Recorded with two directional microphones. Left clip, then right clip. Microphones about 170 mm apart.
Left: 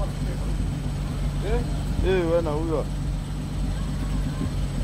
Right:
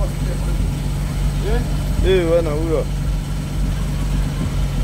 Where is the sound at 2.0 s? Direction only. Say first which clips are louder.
Right 7 dB; 55° left (ahead or behind).